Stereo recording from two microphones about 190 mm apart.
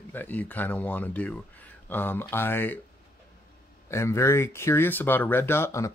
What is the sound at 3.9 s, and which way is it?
Speech, 15° left (ahead or behind).